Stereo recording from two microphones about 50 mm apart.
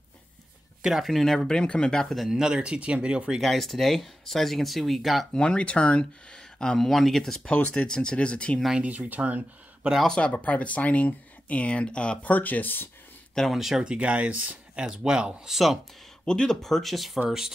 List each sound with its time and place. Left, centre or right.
0.8 s speech: centre
2.0 s speech: centre
2.3 s speech: centre
3.3 s speech: centre
5.3 s speech: centre
6.9 s speech: centre
7.4 s speech: left
7.8 s speech: centre
8.8 s speech: right
10.0 s speech: centre; by 12.9 s left
13.5 s speech: centre
13.8 s speech: right
15.5 s speech: centre
16.3 s speech: centre